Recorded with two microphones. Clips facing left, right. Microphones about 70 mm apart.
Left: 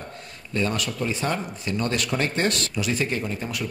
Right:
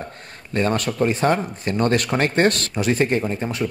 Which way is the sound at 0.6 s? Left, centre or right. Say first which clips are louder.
Right 6 dB; right.